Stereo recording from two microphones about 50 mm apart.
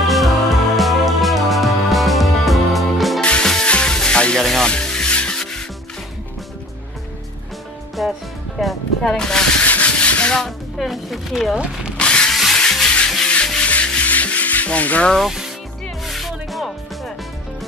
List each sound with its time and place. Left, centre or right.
0.0 s music: centre
3.2 s music: centre
4.4 s music: centre
4.6 s music: centre
8.0 s music: centre
9.1 s speech: centre
9.6 s rub: left
10.8 s music: centre
11.5 s speech: right
12.0 s a sound: centre
12.8 s music: centre
13.6 s rub: left
15.1 s speech: centre
16.1 s music: centre